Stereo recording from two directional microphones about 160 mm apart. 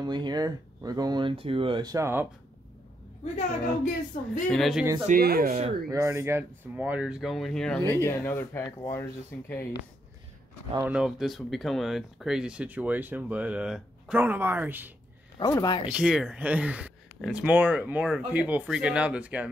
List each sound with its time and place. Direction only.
0.0 s speech: 25° right (ahead or behind)
3.3 s speech: 60° left (ahead or behind)
4.5 s speech: centre (ahead or behind)
5.2 s speech: 70° right (ahead or behind)
5.9 s speech: 20° right (ahead or behind); by 9.8 s 15° left (ahead or behind)
10.8 s speech: 5° right (ahead or behind)
15.5 s speech: 25° left (ahead or behind)
15.9 s speech: 5° right (ahead or behind)